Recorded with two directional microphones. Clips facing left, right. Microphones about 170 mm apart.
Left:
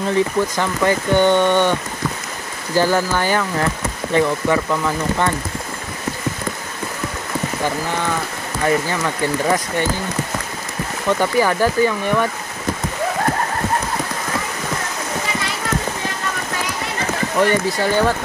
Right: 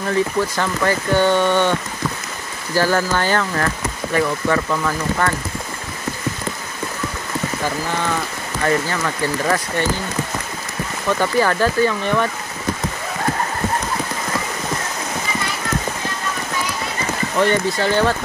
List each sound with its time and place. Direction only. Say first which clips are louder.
0.0 s speech: left 1 dB; 20° left (ahead or behind)
8.6 s speech: left 1 dB; 15° left (ahead or behind)
11.1 s speech: left 1 dB; 15° left (ahead or behind)
17.4 s speech: even; 10° left (ahead or behind)